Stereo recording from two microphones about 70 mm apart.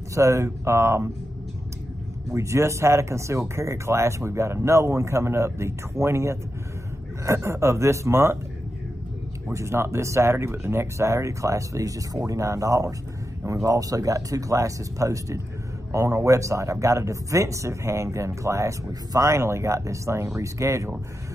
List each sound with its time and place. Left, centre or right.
0.1 s speech: right
2.3 s speech: right
9.5 s speech: right